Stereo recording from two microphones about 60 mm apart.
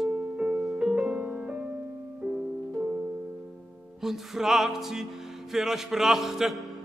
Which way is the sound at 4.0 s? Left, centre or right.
Centre.